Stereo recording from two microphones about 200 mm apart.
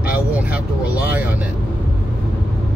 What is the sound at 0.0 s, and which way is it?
Vehicle, 5° right (ahead or behind).